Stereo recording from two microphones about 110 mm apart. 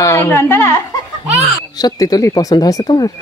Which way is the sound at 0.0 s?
25° left (ahead or behind).